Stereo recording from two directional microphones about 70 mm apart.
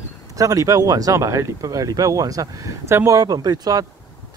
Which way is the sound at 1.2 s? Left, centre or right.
Right.